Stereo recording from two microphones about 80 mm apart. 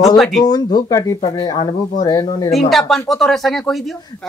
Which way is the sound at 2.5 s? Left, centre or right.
Centre.